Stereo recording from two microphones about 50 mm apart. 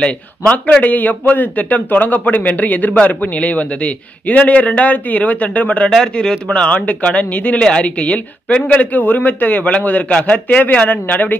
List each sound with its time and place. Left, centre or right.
0.0 s a man's voice: left
6.1 s a man's voice: centre; by 11.3 s left